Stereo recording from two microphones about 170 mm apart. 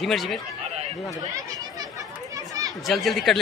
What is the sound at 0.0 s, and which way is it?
Speech, centre (ahead or behind).